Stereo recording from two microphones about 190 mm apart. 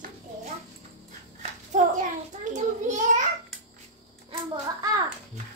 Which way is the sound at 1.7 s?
40° right (ahead or behind).